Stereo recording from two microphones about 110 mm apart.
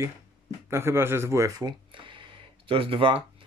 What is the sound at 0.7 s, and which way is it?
Speech, 25° right (ahead or behind).